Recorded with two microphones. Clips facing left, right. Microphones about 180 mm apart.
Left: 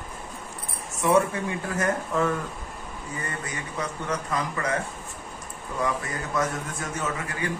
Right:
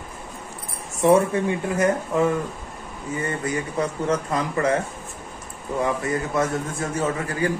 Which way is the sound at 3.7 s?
30° right (ahead or behind).